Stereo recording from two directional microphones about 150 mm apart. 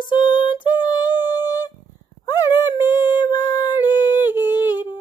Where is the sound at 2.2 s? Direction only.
25° left (ahead or behind).